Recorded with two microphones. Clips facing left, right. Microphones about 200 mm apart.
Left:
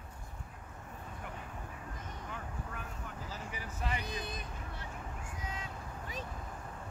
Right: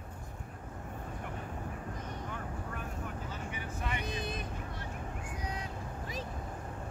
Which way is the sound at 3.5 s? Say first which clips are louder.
Left 1 dB; 35° left (ahead or behind).